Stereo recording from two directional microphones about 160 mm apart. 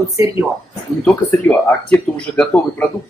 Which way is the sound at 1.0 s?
10° left (ahead or behind).